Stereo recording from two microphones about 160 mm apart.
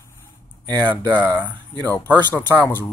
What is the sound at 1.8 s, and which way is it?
Speech, 10° left (ahead or behind).